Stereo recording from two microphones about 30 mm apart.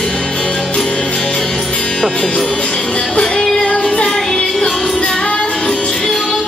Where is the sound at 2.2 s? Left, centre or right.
Left.